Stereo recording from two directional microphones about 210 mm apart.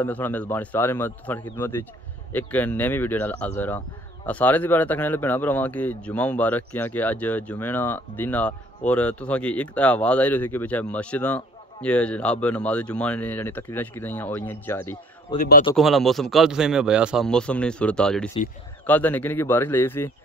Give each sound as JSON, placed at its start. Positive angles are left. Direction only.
{"t": 0.0, "sound": "speech", "side_deg": 10}
{"t": 15.3, "sound": "speech", "side_deg": 40}
{"t": 15.7, "sound": "a man's voice", "side_deg": 0}